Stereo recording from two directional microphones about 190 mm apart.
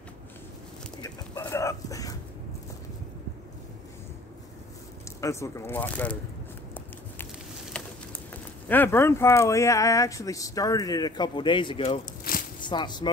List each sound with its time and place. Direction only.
1.0 s a sound: 15° left (ahead or behind)
5.2 s speech: 15° left (ahead or behind)
7.7 s patter: 5° left (ahead or behind)
8.6 s speech: 10° left (ahead or behind); by 12.0 s 25° left (ahead or behind)
12.3 s shuffling cards: 50° left (ahead or behind)
12.6 s speech: 25° left (ahead or behind)